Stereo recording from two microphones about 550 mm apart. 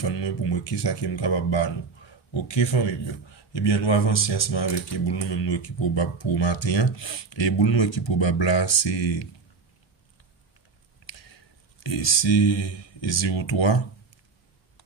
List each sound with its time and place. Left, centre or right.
0.1 s speech: left
11.8 s speech: left
12.5 s speech: left
13.1 s speech: left